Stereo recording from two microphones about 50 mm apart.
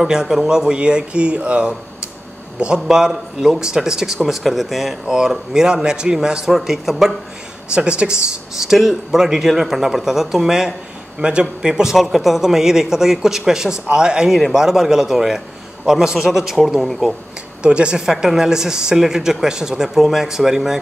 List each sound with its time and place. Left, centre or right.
0.0 s speech: centre
5.0 s a man's voice: centre
7.7 s speech: right
8.5 s speech: centre
17.6 s speech: centre
18.0 s speech: centre